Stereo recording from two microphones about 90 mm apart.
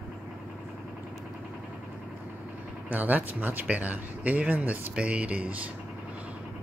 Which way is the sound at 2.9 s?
20° right (ahead or behind).